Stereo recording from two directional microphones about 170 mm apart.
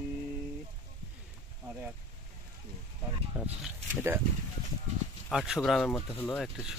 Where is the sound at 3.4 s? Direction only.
5° right (ahead or behind).